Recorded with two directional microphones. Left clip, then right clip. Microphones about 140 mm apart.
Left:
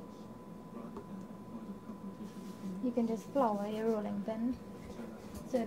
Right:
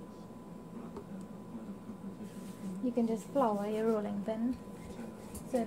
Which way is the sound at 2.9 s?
25° right (ahead or behind).